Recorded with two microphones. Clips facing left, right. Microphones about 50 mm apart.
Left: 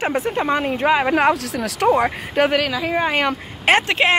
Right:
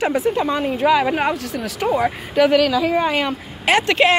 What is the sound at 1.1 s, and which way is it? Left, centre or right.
Speech, left.